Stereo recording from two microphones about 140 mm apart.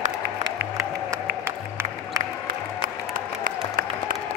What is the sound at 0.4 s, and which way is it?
Music, 25° right (ahead or behind).